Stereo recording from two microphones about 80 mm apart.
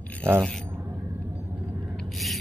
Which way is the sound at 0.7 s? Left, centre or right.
Right.